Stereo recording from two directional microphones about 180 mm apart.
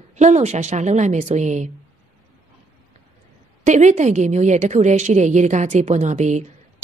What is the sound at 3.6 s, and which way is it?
A woman's voice, 40° right (ahead or behind).